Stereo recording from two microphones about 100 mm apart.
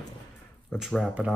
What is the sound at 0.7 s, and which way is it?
Speech, 5° right (ahead or behind).